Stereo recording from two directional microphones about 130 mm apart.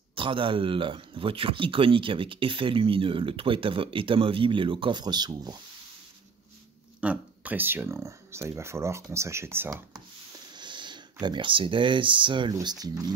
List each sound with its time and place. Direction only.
0.1 s speech: 40° right (ahead or behind)
7.0 s speech: 10° right (ahead or behind)
10.5 s speech: 35° right (ahead or behind)